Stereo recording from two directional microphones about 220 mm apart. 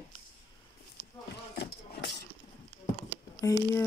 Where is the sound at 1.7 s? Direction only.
50° left (ahead or behind).